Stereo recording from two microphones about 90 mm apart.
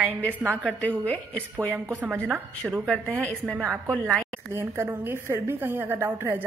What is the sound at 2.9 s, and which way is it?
A woman's voice, 10° left (ahead or behind).